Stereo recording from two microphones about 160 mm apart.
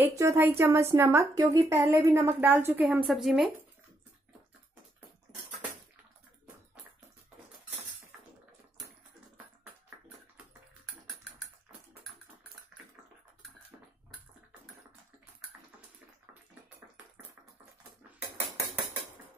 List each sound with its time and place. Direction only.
0.0 s a woman's voice: 20° right (ahead or behind)
3.1 s speech: centre (ahead or behind)